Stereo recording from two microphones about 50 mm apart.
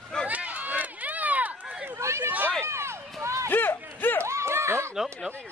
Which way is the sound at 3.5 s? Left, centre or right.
Left.